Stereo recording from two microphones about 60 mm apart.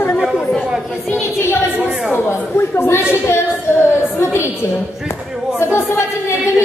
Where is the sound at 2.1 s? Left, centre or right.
Left.